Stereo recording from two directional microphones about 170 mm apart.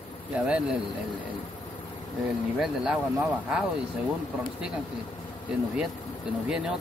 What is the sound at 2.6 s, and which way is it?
Speech, 5° right (ahead or behind).